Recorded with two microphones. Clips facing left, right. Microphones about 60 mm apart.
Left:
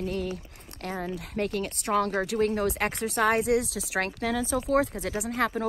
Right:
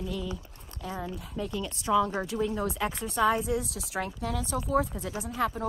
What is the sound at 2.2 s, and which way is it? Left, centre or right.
Speech, left.